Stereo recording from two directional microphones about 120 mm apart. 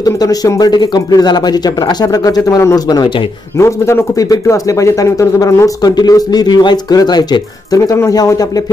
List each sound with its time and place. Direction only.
0.0 s speech: 30° left (ahead or behind)